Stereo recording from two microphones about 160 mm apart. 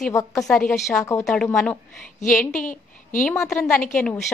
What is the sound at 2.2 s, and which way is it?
A woman's voice, 55° left (ahead or behind).